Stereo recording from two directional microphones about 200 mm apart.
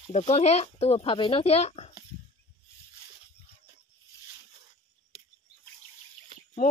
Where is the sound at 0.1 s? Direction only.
35° left (ahead or behind).